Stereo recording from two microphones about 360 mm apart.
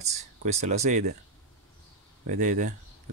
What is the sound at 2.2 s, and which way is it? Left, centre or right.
Speech, right.